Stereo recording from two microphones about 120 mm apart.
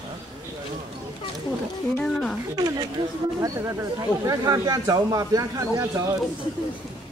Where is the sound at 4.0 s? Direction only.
30° right (ahead or behind).